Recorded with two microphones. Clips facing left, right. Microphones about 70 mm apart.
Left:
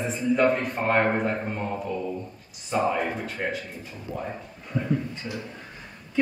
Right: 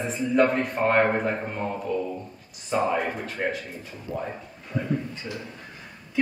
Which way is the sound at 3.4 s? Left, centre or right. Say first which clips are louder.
Right 2 dB; centre.